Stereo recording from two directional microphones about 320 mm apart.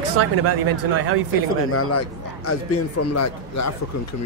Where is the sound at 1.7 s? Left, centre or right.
Left.